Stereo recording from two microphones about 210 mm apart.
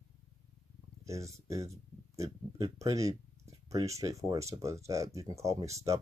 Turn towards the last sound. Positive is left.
turn(degrees=-15)  # may be behind; listen again after turning